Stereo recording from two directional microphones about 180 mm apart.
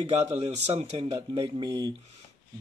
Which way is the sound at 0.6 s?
35° right (ahead or behind).